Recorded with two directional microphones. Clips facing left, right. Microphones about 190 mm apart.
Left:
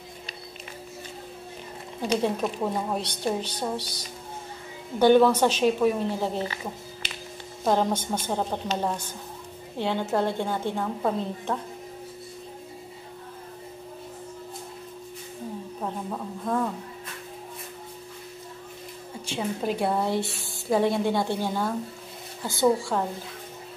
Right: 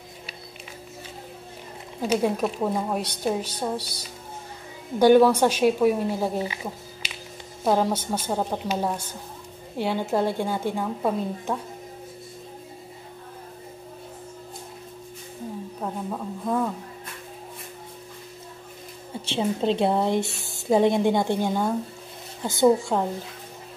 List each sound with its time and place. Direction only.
2.0 s a woman's voice: 10° right (ahead or behind)
15.8 s a sound: 5° right (ahead or behind)
19.2 s a woman's voice: 25° right (ahead or behind)